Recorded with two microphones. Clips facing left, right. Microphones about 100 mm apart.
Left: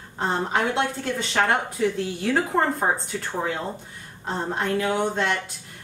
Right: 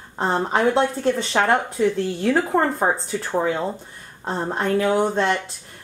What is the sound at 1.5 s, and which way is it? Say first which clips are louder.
Speech: right 4 dB; centre (ahead or behind).